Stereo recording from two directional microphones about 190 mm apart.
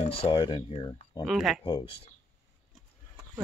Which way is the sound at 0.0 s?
30° left (ahead or behind).